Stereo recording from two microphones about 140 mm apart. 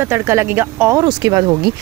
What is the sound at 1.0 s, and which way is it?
Speech, 30° right (ahead or behind).